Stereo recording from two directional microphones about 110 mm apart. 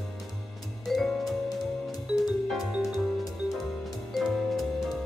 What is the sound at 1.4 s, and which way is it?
Music, 35° left (ahead or behind).